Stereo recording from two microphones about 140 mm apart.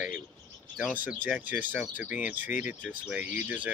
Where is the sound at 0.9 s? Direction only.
10° right (ahead or behind).